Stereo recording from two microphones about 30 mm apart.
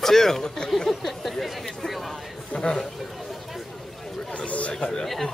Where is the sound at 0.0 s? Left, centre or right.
Centre.